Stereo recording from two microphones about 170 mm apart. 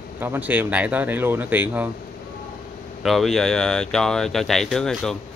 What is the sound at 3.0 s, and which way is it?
Speech, centre (ahead or behind).